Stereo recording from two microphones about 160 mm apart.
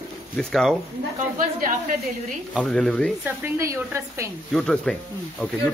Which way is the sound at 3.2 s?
15° right (ahead or behind).